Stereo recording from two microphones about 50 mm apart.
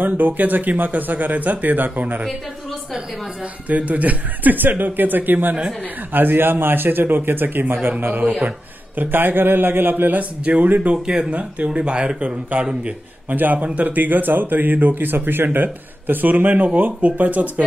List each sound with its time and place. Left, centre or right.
0.0 s speech: right
3.6 s a man's voice: right
8.4 s a sound: right
9.1 s speech: right
11.1 s speech: centre
12.5 s a man's voice: right